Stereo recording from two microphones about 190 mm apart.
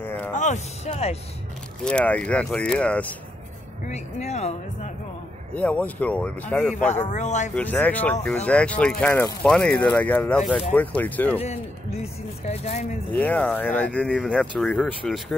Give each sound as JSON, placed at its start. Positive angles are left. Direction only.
{"t": 0.0, "sound": "a sound", "side_deg": 10}
{"t": 0.3, "sound": "speech", "side_deg": 40}
{"t": 1.9, "sound": "speech", "side_deg": 5}
{"t": 3.8, "sound": "speech", "side_deg": 35}
{"t": 5.5, "sound": "speech", "side_deg": 5}
{"t": 6.9, "sound": "speech", "side_deg": 40}
{"t": 7.5, "sound": "speech", "side_deg": 10}
{"t": 11.3, "sound": "speech", "side_deg": 35}
{"t": 13.1, "sound": "speech", "side_deg": 10}